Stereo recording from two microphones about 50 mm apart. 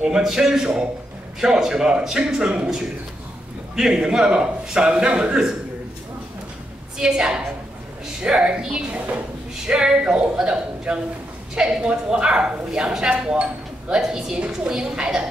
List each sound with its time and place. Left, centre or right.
0.0 s a man's voice: centre
7.0 s a man's voice: centre